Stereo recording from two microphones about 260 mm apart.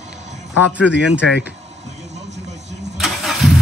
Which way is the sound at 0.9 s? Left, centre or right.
Left.